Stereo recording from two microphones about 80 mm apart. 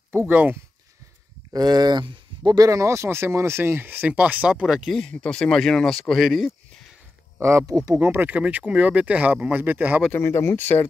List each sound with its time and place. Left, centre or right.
0.3 s speech: right
1.5 s speech: right; by 4.9 s centre
4.9 s speech: centre
7.3 s speech: right
8.0 s speech: right
10.1 s speech: left